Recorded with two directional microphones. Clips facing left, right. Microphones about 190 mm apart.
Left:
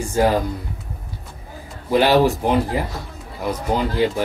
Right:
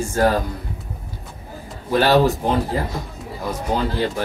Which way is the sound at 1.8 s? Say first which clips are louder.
Left 1 dB; 15° left (ahead or behind).